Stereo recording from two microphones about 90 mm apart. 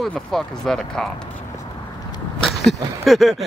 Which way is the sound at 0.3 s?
5° left (ahead or behind).